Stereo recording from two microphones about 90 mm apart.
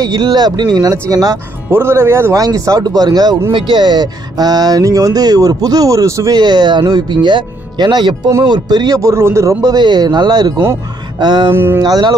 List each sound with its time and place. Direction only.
0.0 s speech: 45° right (ahead or behind)
1.7 s speech: 25° right (ahead or behind)
2.3 s speech: 40° right (ahead or behind)
3.5 s speech: 60° right (ahead or behind); by 6.3 s 35° right (ahead or behind)
6.3 s speech: 50° right (ahead or behind)
11.5 s speech: 25° right (ahead or behind)
11.8 s speech: 50° right (ahead or behind)